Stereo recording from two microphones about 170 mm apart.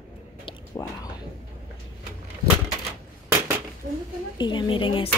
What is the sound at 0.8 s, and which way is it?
Speech, 20° left (ahead or behind).